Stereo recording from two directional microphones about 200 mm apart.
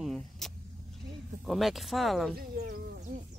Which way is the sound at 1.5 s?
Centre (ahead or behind).